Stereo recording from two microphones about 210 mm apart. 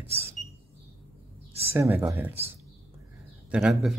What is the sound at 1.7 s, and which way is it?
Speech, 10° right (ahead or behind).